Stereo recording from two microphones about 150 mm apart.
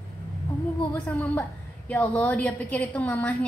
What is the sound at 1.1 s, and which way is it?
A woman's voice, 10° left (ahead or behind).